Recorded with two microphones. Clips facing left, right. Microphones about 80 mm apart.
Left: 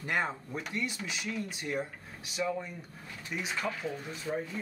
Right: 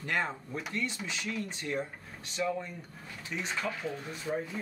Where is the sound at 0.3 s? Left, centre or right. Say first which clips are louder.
Even; centre.